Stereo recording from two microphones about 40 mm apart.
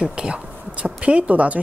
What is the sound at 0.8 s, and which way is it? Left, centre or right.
Speech, right.